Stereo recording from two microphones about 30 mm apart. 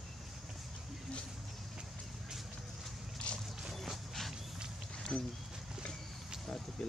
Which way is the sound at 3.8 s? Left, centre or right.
Centre.